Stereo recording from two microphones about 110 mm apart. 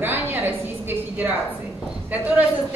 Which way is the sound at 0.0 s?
20° right (ahead or behind).